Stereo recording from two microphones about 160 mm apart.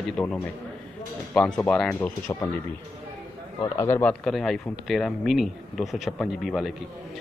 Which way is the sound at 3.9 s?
10° left (ahead or behind).